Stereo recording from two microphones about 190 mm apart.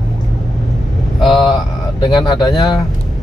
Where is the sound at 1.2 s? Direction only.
25° left (ahead or behind).